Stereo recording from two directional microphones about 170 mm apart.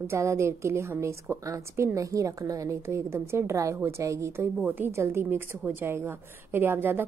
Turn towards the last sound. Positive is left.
turn(degrees=-10)  # may be behind; listen again after turning